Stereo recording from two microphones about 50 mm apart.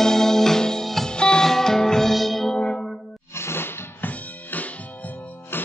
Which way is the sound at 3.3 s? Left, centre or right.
Left.